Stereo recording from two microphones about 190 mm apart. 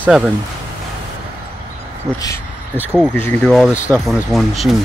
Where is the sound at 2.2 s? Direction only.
15° left (ahead or behind).